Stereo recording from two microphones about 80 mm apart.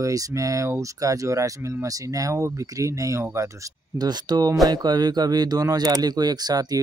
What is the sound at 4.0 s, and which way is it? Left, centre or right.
Speech, right.